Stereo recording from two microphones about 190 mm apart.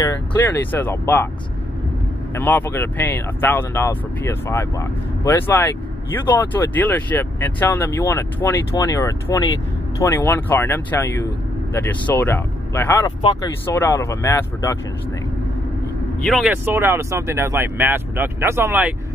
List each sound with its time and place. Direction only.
0.0 s speech: 15° left (ahead or behind)
2.3 s speech: 10° left (ahead or behind)
13.2 s speech: 25° left (ahead or behind)
13.7 s speech: 15° left (ahead or behind)
16.3 s speech: centre (ahead or behind)
16.6 s speech: 10° right (ahead or behind)